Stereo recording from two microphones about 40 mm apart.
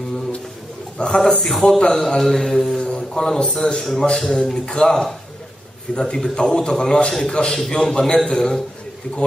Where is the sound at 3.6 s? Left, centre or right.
Left.